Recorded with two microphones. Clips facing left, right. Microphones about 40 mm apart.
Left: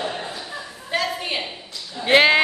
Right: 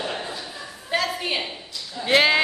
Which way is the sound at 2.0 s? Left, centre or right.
Centre.